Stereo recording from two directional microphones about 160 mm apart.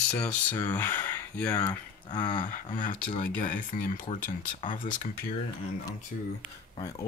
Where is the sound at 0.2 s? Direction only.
10° left (ahead or behind).